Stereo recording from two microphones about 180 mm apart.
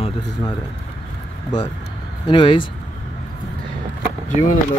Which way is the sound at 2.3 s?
25° left (ahead or behind).